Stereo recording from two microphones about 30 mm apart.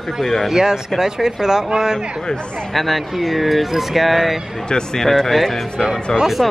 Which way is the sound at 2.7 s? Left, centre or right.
Centre.